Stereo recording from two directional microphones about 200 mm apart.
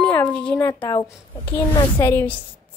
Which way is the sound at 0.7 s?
20° left (ahead or behind).